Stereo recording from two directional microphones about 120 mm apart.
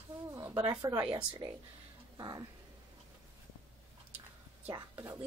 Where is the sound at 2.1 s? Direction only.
35° right (ahead or behind).